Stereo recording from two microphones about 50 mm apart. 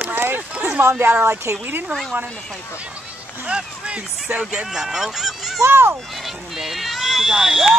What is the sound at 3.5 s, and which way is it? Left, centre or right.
Speech, right.